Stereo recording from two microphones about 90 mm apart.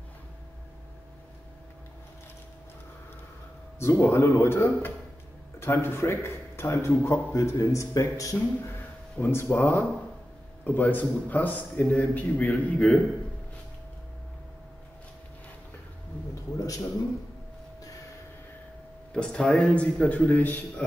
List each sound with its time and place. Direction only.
3.8 s a man's voice: 30° left (ahead or behind)
16.5 s a sound: 40° left (ahead or behind)
19.1 s a man's voice: 10° left (ahead or behind)